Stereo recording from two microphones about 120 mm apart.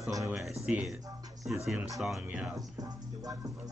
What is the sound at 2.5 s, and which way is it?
Music, 30° right (ahead or behind).